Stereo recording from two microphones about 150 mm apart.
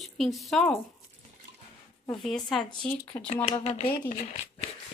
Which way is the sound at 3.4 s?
40° left (ahead or behind).